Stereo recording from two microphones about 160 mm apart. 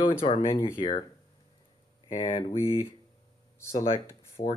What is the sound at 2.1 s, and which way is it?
Speech, 35° left (ahead or behind).